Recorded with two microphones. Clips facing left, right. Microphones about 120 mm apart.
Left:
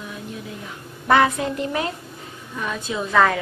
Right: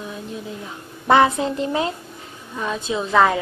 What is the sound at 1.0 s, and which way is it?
A woman's voice, 20° right (ahead or behind).